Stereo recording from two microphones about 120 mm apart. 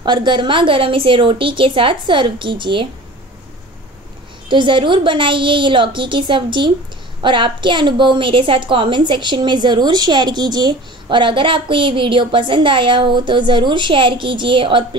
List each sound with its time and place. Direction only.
0.0 s a woman's voice: 40° right (ahead or behind)
4.5 s a woman's voice: 40° right (ahead or behind)